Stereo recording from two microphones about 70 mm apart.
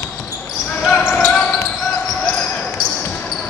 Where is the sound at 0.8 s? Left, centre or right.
Centre.